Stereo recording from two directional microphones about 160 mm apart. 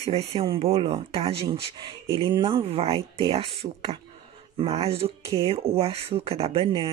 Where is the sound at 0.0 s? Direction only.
40° right (ahead or behind).